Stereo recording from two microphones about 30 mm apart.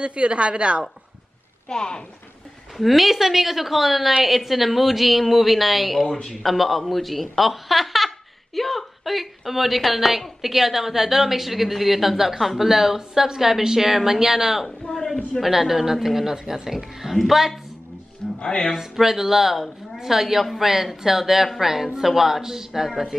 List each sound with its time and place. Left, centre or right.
0.0 s a woman's voice: right
1.7 s speech: left
2.8 s a woman's voice: centre
14.9 s a sound: left
15.4 s a woman's voice: centre
18.4 s speech: left
18.8 s a woman's voice: centre
22.7 s a woman's voice: centre